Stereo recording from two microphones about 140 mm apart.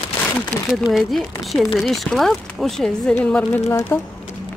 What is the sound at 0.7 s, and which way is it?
A woman's voice, centre (ahead or behind).